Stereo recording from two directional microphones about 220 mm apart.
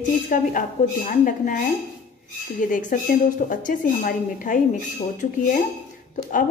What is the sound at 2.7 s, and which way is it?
A woman's voice, 35° left (ahead or behind).